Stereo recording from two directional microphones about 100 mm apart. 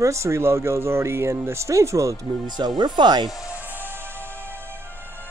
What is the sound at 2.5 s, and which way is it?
Speech, 45° right (ahead or behind).